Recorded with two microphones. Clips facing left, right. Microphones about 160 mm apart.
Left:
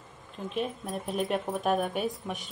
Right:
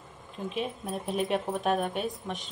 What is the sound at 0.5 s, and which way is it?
Speech, centre (ahead or behind).